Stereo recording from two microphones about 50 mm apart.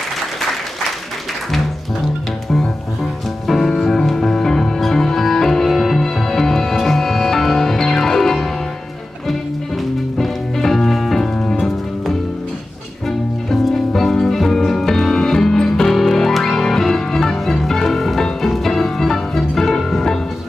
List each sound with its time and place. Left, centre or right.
3.4 s music: centre
10.1 s music: centre
13.5 s music: centre